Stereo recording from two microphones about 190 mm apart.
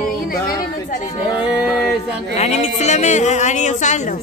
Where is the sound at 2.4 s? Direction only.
35° left (ahead or behind).